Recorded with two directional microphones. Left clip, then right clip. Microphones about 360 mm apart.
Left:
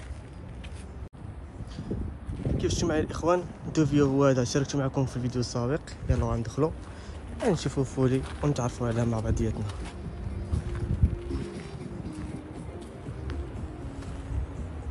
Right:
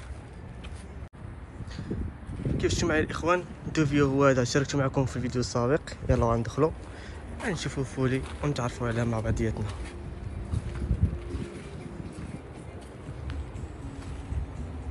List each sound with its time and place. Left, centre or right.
2.5 s speech: centre